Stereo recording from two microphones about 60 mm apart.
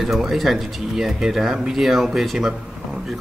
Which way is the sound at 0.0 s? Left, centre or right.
Centre.